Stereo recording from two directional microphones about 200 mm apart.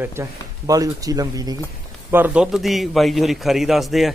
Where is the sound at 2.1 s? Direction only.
5° right (ahead or behind).